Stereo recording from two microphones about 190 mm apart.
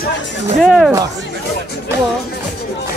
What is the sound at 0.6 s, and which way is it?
Speech, centre (ahead or behind).